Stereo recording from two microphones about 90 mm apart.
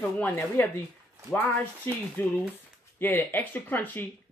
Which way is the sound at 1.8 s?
25° left (ahead or behind).